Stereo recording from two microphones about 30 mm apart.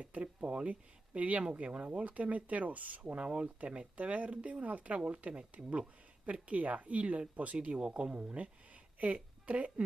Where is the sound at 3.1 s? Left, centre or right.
Right.